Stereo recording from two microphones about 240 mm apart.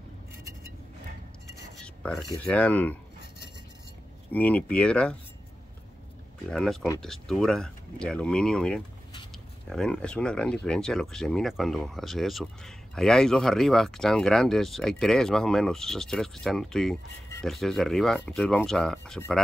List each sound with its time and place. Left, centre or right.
2.0 s speech: centre
4.3 s speech: centre
6.5 s speech: centre